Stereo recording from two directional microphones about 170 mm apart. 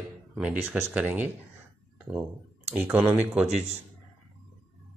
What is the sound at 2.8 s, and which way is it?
Speech, 10° right (ahead or behind).